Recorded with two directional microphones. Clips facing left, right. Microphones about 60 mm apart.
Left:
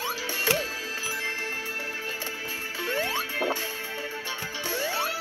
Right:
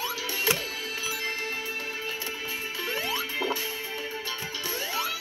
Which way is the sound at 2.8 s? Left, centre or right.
Left.